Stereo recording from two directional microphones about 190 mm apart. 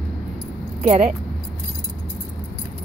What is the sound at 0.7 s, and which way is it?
Speech, 35° right (ahead or behind).